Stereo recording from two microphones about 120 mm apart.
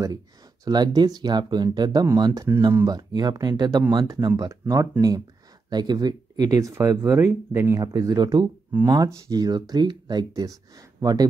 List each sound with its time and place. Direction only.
0.7 s speech: 35° right (ahead or behind)
3.0 s speech: 35° right (ahead or behind)